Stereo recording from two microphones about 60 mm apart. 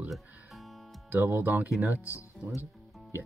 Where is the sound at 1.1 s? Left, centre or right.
Right.